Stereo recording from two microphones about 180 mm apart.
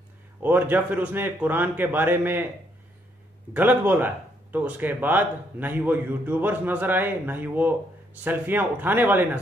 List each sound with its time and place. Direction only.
0.4 s speech: 10° right (ahead or behind)
3.5 s speech: 10° right (ahead or behind)